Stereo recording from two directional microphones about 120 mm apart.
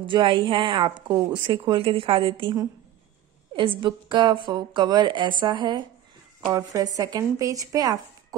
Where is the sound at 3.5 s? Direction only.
45° right (ahead or behind).